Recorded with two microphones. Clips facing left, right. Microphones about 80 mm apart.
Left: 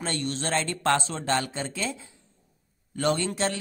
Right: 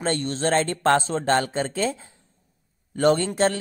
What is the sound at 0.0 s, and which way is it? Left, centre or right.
Speech, right.